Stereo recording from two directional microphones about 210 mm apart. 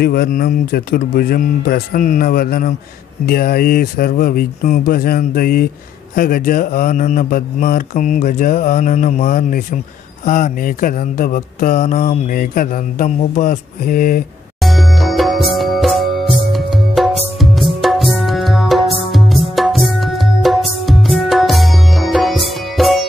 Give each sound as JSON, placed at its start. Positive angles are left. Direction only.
{"t": 0.0, "sound": "speech", "side_deg": 45}
{"t": 14.6, "sound": "music", "side_deg": 0}